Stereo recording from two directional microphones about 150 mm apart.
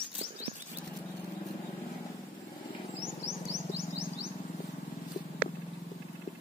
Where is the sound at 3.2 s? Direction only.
20° left (ahead or behind).